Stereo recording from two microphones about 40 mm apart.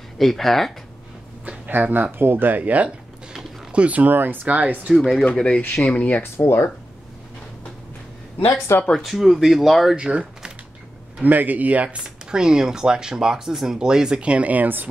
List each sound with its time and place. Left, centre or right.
0.2 s speech: centre
1.7 s speech: right
4.1 s speech: right
4.5 s speech: right
4.9 s speech: centre
5.3 s speech: left
5.8 s speech: left
6.2 s speech: left
8.7 s speech: left
9.0 s speech: centre
9.9 s speech: right
11.2 s speech: right
12.3 s speech: centre
14.5 s speech: right